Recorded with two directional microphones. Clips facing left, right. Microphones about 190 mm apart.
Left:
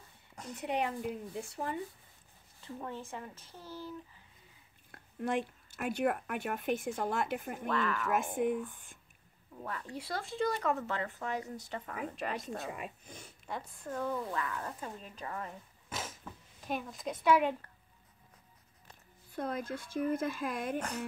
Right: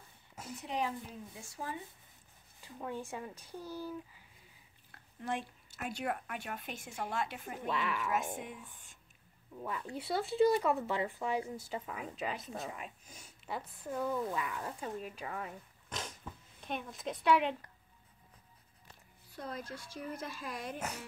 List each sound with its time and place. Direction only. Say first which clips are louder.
0.6 s a woman's voice: left 3 dB; 60° left (ahead or behind)
2.6 s speech: even; 15° right (ahead or behind)
4.9 s speech: left 5 dB; 55° left (ahead or behind)
7.7 s speech: left 3 dB; 10° right (ahead or behind)
8.1 s speech: left 6 dB; 50° left (ahead or behind)
9.7 s speech: right 2 dB; 5° right (ahead or behind)
13.0 s speech: left 6 dB; 60° left (ahead or behind)
13.5 s speech: even; 5° right (ahead or behind)
15.9 s a sound: left 2 dB; 5° left (ahead or behind)
16.6 s a woman's voice: left 2 dB; centre (ahead or behind)
19.3 s speech: left 6 dB; 55° left (ahead or behind)